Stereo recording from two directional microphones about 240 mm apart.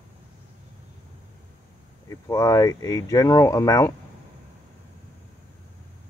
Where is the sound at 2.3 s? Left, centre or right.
Centre.